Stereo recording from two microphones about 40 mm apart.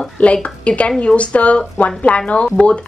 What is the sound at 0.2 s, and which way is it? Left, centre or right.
A woman's voice, left.